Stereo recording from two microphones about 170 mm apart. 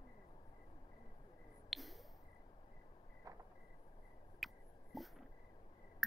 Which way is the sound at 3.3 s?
20° right (ahead or behind).